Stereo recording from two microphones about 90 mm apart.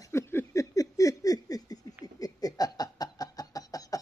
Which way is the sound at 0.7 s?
40° left (ahead or behind).